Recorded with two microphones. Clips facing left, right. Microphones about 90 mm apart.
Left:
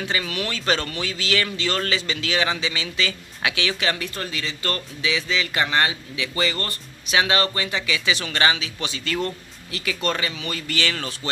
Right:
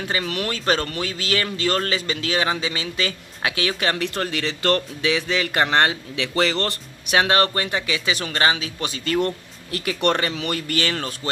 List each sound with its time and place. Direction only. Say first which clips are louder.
0.1 s speech: right 4 dB; 40° right (ahead or behind)
4.0 s speech: right 5 dB; 65° right (ahead or behind)
7.2 s speech: right 3 dB; 50° right (ahead or behind)
10.8 s speech: right 1 dB; 40° right (ahead or behind)